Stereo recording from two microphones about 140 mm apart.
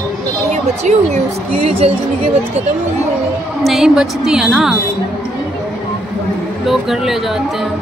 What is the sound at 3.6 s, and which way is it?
A woman's voice, centre (ahead or behind).